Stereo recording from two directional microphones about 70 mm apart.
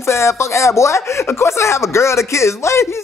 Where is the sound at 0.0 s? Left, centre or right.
Left.